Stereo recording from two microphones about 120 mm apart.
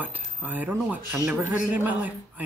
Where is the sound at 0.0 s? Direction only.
15° right (ahead or behind).